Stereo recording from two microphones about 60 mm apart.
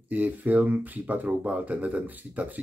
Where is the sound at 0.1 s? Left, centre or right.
Right.